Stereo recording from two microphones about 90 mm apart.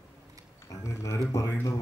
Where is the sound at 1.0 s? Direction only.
35° left (ahead or behind).